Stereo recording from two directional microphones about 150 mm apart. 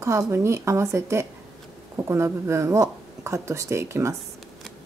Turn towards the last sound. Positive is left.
turn(degrees=-20)  # may be behind; listen again after turning